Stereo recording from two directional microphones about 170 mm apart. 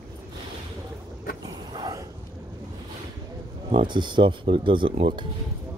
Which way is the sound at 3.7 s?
30° right (ahead or behind).